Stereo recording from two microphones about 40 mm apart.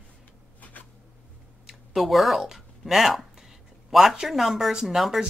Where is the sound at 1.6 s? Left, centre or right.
Centre.